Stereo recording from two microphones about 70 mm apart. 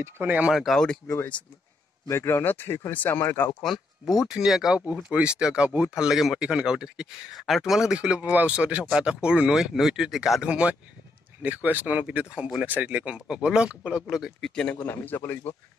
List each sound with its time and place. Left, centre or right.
0.5 s speech: centre
2.0 s speech: left
3.6 s speech: centre
5.1 s speech: centre
10.5 s speech: centre
14.4 s a man's voice: centre
14.9 s a man's voice: left